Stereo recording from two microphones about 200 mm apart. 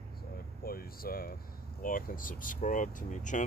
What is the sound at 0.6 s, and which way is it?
Speech, 45° left (ahead or behind).